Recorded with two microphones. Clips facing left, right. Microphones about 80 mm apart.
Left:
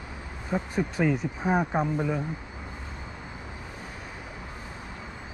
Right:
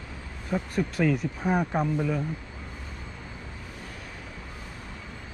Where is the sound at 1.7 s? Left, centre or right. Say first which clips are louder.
Even; centre.